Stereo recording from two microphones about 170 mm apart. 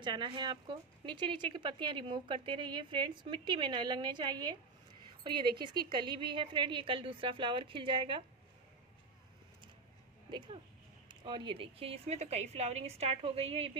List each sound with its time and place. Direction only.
0.0 s speech: 30° right (ahead or behind)
10.3 s a woman's voice: 30° right (ahead or behind)